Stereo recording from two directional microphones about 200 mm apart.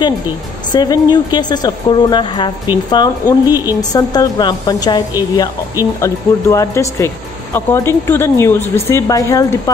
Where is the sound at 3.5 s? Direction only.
10° right (ahead or behind).